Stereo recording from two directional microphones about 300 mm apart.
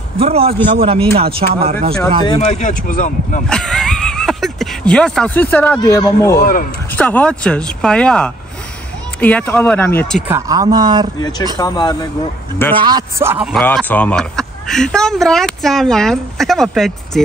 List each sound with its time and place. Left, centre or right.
0.2 s speech: centre
2.2 s speech: left
3.4 s speech: centre
6.4 s speech: left
7.0 s speech: centre
11.5 s a man's voice: centre
12.7 s speech: centre